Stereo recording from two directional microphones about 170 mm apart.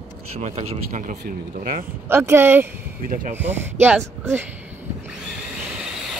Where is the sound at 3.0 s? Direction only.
55° right (ahead or behind).